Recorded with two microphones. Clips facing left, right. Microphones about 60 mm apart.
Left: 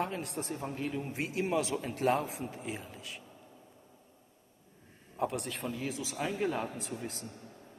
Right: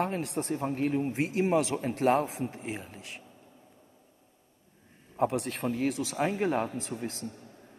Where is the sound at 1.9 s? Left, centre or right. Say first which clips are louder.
Right 5 dB; right.